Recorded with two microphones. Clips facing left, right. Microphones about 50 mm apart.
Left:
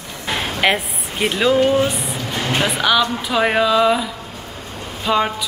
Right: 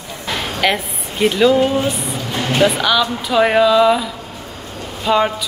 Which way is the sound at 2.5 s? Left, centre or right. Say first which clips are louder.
Right 2 dB; centre.